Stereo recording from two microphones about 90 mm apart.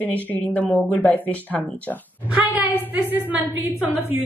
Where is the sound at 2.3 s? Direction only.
20° right (ahead or behind).